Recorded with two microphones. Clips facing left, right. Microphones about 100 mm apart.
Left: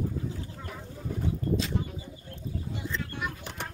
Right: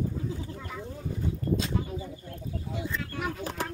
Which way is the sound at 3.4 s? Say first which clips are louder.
Right 6 dB; 35° right (ahead or behind).